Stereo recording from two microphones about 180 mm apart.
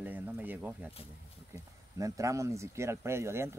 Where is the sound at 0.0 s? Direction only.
10° right (ahead or behind).